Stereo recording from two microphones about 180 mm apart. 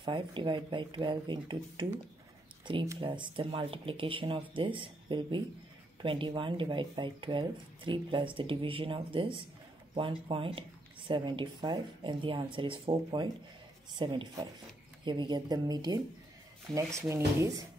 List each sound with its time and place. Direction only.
0.0 s speech: 25° right (ahead or behind)
16.7 s speech: 5° left (ahead or behind)
17.1 s speech: 15° right (ahead or behind)